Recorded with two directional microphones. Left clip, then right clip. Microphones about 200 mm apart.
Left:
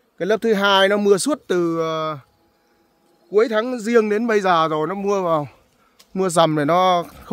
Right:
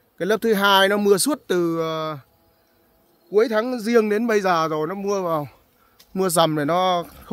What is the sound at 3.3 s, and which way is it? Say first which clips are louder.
A man's voice: left 1 dB; centre (ahead or behind).